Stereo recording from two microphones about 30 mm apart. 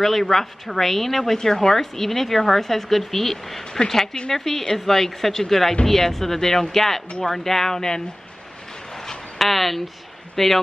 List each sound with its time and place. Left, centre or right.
0.0 s speech: centre
8.9 s a sound: centre
9.4 s speech: centre